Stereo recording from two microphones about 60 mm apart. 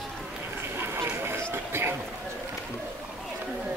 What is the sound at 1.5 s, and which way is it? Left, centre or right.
Run, right.